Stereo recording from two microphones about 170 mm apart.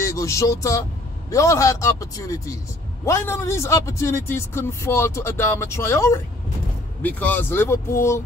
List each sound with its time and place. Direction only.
0.0 s a man's voice: 15° left (ahead or behind)